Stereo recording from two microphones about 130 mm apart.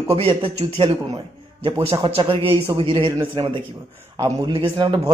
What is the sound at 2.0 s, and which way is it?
A man's voice, 45° right (ahead or behind).